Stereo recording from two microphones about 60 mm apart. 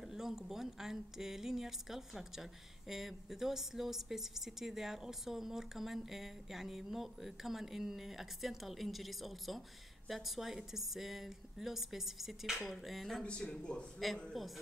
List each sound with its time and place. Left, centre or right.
0.0 s a woman's voice: centre
13.2 s speech: centre
13.9 s a woman's voice: centre